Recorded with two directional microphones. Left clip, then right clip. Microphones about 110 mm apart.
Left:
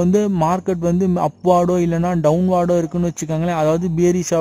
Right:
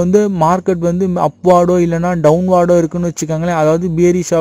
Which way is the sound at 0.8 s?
20° right (ahead or behind).